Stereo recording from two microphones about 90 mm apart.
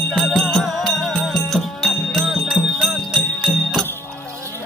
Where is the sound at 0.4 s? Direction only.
Centre (ahead or behind).